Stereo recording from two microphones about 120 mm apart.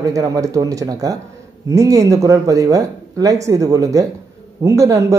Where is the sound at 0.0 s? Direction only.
30° right (ahead or behind).